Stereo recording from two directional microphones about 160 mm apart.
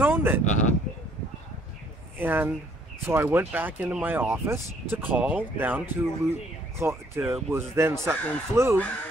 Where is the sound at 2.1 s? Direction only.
10° right (ahead or behind).